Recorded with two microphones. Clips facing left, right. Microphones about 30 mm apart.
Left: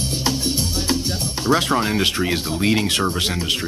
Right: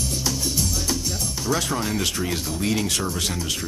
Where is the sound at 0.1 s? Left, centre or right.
Left.